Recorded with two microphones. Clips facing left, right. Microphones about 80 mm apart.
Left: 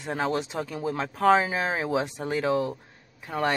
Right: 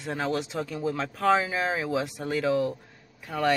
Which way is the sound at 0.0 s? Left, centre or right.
Left.